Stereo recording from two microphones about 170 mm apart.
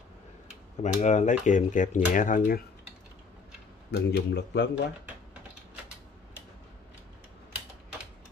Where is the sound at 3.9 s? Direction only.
75° left (ahead or behind).